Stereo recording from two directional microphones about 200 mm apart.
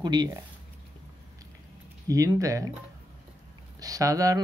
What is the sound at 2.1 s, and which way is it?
Speech, 15° right (ahead or behind).